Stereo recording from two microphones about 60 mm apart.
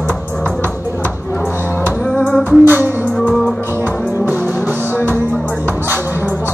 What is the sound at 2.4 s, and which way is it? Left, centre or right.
Music, right.